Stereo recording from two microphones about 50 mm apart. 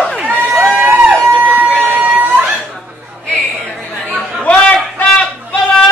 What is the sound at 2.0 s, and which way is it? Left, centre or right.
Chatter, right.